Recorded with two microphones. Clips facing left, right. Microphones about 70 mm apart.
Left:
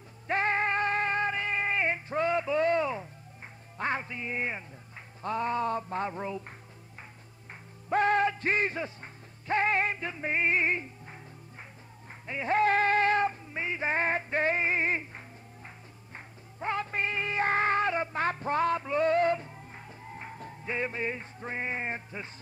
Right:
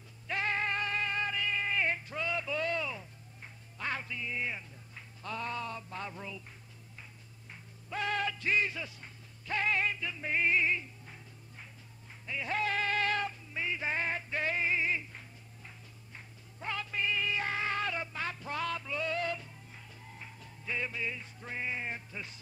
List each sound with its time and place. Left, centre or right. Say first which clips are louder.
0.3 s music: left 6 dB; left
7.9 s music: left 9 dB; left
12.3 s music: left 8 dB; left